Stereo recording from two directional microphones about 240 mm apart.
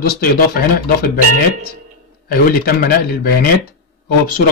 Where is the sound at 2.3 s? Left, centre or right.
Left.